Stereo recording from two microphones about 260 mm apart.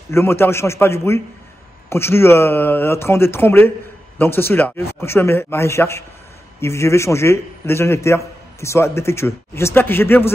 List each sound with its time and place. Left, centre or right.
0.1 s speech: centre